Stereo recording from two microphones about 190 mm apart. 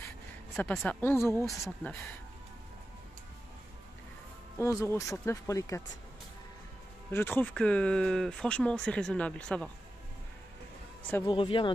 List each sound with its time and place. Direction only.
0.6 s speech: 5° left (ahead or behind)
4.6 s speech: 15° left (ahead or behind)
7.1 s speech: 10° left (ahead or behind)
11.2 s speech: 25° left (ahead or behind)